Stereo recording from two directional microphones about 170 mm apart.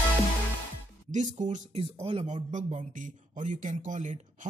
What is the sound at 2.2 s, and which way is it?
Speech, 45° right (ahead or behind).